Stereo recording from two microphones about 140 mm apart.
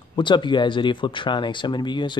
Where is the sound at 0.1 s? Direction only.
35° left (ahead or behind).